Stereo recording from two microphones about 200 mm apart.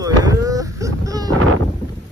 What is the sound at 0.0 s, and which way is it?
Baby cry, 15° right (ahead or behind).